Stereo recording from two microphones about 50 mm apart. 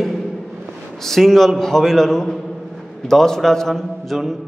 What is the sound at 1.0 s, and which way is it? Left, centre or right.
A man's voice, centre.